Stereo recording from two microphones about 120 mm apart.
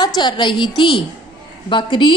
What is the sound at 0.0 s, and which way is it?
A woman's voice, 35° left (ahead or behind).